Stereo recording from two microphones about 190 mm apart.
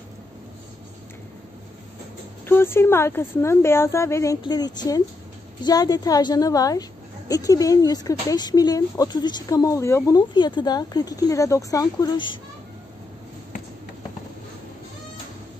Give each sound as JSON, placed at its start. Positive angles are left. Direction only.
{"t": 2.4, "sound": "a woman's voice", "side_deg": 10}